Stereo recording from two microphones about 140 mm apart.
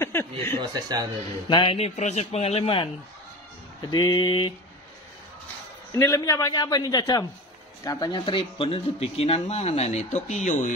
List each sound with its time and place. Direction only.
0.0 s a sound: 15° left (ahead or behind)
0.6 s speech: 30° right (ahead or behind)
1.5 s speech: 40° left (ahead or behind)
2.0 s speech: 55° left (ahead or behind)
3.9 s speech: 30° left (ahead or behind)
5.9 s a man's voice: 20° left (ahead or behind); by 10.7 s 60° left (ahead or behind)